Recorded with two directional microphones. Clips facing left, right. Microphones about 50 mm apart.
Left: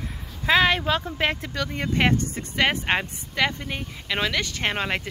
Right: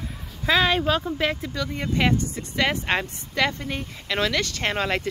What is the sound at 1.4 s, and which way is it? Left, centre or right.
Speech, left.